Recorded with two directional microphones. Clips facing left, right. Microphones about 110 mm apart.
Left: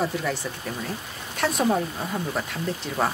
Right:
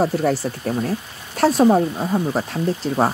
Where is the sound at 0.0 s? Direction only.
40° right (ahead or behind).